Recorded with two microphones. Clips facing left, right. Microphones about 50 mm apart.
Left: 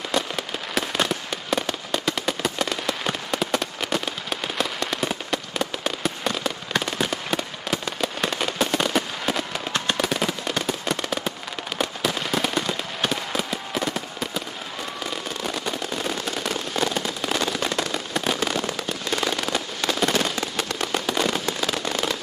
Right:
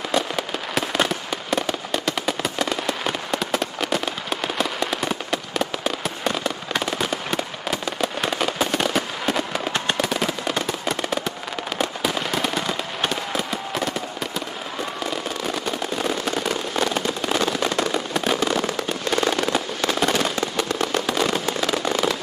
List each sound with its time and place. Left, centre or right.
0.1 s fireworks: centre
9.7 s fireworks: centre
9.9 s machine gun: centre
11.8 s fireworks: centre
16.3 s fireworks: centre
17.3 s firecracker: centre
17.9 s fireworks: centre
19.9 s fireworks: centre